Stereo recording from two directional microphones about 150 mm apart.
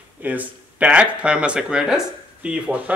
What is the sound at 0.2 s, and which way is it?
Speech, 10° right (ahead or behind).